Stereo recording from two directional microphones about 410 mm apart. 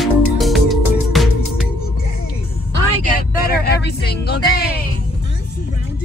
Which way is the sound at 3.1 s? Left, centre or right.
Left.